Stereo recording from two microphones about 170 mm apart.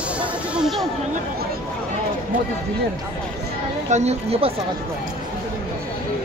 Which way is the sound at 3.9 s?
40° right (ahead or behind).